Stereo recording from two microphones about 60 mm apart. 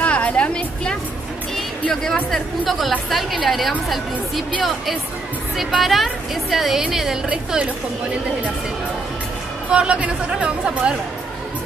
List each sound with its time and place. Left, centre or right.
0.0 s a sound: centre
2.3 s a woman's voice: centre
5.6 s a woman's voice: centre
9.7 s speech: centre